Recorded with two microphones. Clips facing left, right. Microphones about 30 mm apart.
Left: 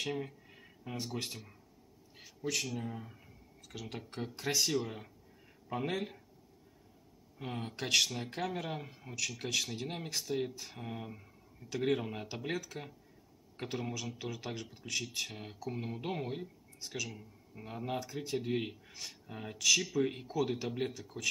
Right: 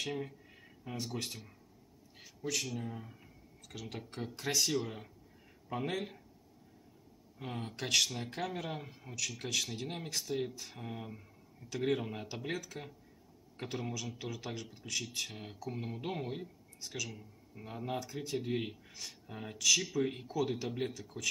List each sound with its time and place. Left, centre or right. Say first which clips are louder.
0.0 s speech: left 1 dB; centre
7.3 s speech: left 1 dB; centre